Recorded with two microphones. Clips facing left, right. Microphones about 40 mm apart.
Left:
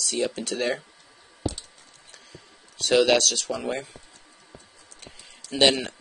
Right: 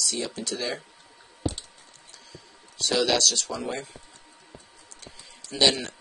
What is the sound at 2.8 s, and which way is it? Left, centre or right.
Speech, left.